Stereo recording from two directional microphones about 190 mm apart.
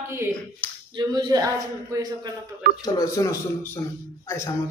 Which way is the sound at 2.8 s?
20° left (ahead or behind).